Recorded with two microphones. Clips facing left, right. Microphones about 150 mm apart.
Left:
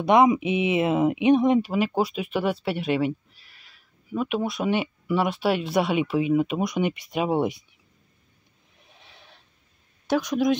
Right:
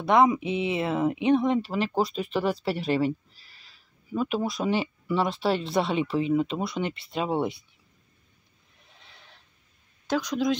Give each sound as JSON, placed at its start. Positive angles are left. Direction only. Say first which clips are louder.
{"t": 0.0, "sound": "speech", "louder": "left 3 dB", "side_deg": 20}
{"t": 9.0, "sound": "neigh", "louder": "left 2 dB", "side_deg": 15}
{"t": 10.0, "sound": "speech", "louder": "left 3 dB", "side_deg": 15}